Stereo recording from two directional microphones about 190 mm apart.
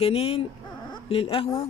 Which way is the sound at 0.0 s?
30° left (ahead or behind).